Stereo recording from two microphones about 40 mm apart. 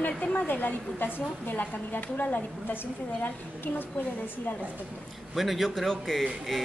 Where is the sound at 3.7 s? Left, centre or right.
Left.